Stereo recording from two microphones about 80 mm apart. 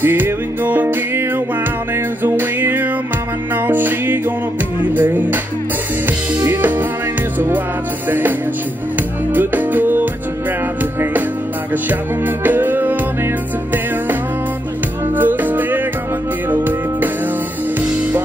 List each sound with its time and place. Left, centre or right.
0.0 s music: right
2.2 s music: right
4.9 s speech: right
6.0 s drum kit: right
8.1 s speech: right
9.3 s music: right
12.4 s music: right
15.1 s music: right